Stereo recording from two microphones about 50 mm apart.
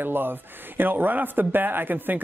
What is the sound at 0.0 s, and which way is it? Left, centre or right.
Speech, right.